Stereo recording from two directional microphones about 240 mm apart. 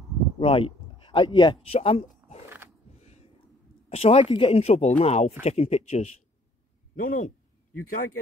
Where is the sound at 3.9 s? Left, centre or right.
Left.